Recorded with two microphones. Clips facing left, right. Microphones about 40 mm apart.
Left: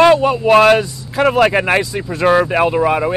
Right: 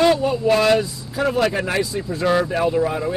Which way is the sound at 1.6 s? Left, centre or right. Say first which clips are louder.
Left 6 dB; left.